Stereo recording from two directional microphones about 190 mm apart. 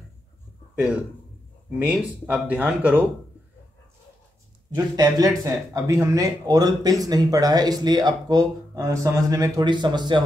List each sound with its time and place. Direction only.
1.8 s speech: 10° right (ahead or behind)
4.7 s speech: 20° right (ahead or behind)